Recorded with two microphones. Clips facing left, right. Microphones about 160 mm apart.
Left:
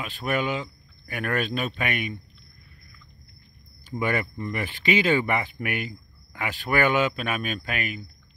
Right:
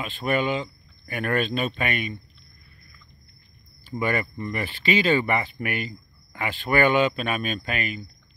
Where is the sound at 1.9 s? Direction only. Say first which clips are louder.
Right 1 dB; 15° left (ahead or behind).